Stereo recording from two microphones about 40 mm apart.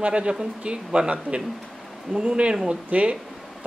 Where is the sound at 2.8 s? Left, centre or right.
Right.